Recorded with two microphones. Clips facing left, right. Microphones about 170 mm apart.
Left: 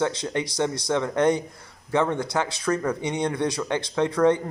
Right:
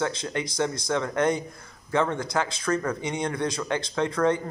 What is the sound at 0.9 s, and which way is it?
Speech, 15° left (ahead or behind).